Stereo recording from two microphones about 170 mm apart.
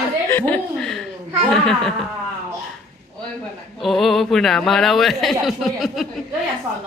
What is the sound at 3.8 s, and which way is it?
Speech, centre (ahead or behind).